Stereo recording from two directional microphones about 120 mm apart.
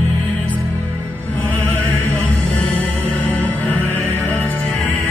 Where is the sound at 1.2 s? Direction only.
15° left (ahead or behind).